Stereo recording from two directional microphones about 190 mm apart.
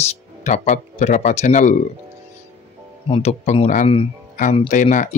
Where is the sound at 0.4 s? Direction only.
35° left (ahead or behind).